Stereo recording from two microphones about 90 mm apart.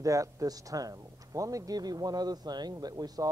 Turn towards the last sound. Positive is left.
turn(degrees=-45)  # may be behind; listen again after turning